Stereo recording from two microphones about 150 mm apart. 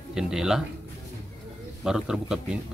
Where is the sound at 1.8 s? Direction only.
5° right (ahead or behind).